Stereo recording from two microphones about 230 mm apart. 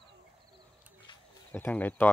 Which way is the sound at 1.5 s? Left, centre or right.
Centre.